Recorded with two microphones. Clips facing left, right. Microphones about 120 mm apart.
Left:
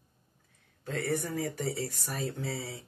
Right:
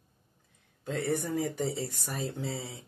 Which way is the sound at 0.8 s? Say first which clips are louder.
Right 1 dB; 15° right (ahead or behind).